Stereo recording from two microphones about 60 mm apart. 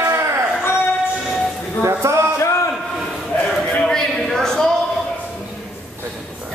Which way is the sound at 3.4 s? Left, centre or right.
Centre.